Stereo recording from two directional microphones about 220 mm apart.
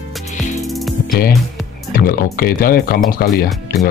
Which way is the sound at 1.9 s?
40° left (ahead or behind).